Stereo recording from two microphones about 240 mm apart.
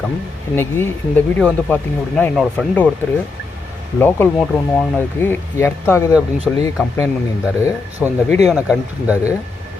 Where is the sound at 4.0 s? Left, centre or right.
Centre.